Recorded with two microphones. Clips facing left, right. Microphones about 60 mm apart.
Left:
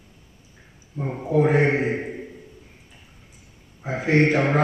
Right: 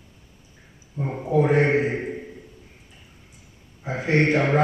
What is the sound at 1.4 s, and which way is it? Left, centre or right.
Mantra, centre.